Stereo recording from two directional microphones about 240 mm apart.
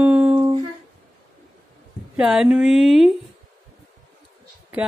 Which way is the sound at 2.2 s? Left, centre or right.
Centre.